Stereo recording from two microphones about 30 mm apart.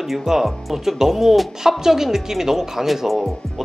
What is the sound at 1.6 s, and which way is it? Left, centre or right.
A man's voice, centre.